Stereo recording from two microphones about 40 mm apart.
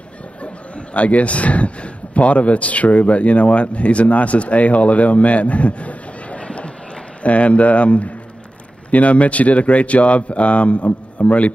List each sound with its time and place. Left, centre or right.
0.4 s a man's voice: left